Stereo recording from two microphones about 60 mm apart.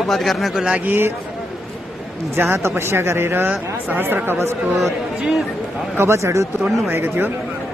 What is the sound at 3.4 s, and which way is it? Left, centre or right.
Speech, right.